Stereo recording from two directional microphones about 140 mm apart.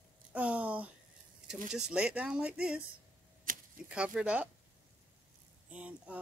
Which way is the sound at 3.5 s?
75° right (ahead or behind).